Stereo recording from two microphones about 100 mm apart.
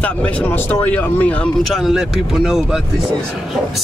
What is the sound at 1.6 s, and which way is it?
Speech, centre (ahead or behind).